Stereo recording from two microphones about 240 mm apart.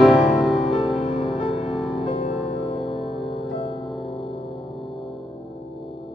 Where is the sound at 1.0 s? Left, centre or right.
Left.